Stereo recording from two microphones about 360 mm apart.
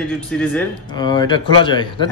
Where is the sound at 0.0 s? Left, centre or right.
Centre.